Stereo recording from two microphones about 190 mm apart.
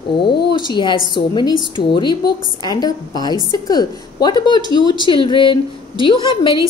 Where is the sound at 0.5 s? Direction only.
25° left (ahead or behind).